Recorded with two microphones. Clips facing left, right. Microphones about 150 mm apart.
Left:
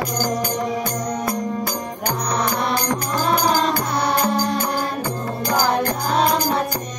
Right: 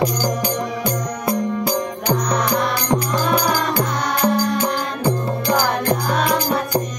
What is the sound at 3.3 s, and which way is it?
Music, 45° left (ahead or behind).